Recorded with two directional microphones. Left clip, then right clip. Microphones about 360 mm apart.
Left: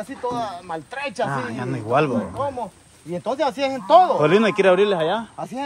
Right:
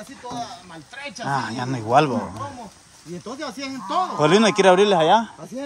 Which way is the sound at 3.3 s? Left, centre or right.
Centre.